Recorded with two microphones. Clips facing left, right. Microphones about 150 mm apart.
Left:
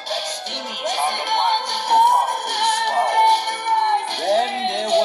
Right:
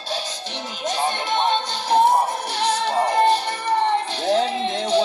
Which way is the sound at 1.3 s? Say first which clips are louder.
Left 1 dB; 65° left (ahead or behind).